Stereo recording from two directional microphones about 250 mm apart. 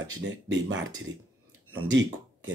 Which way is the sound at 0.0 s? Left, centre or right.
Right.